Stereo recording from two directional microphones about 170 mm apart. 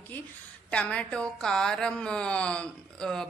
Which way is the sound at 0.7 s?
5° left (ahead or behind).